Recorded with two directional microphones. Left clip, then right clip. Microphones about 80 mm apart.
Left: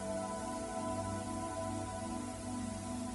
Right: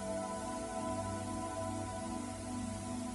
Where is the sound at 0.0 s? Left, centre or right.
Centre.